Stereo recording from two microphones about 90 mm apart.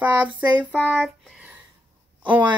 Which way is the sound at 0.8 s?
Centre (ahead or behind).